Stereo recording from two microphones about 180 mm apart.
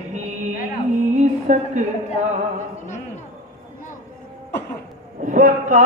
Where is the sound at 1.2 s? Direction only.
40° right (ahead or behind).